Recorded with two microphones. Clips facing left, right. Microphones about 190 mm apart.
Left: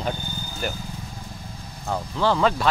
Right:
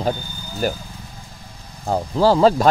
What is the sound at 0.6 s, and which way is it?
Speech, 40° right (ahead or behind).